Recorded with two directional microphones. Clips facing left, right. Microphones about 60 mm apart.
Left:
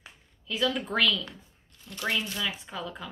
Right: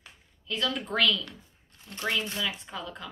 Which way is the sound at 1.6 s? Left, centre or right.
Right.